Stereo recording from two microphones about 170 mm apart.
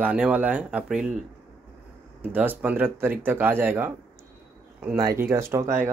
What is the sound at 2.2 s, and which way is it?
Speech, 10° right (ahead or behind).